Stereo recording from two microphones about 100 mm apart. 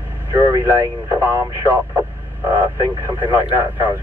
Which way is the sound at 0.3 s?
20° right (ahead or behind).